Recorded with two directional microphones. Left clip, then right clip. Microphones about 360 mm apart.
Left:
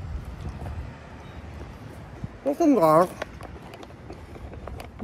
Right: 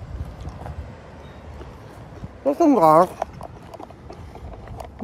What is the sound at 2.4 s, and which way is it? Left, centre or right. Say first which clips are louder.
Speech: right 4 dB; centre.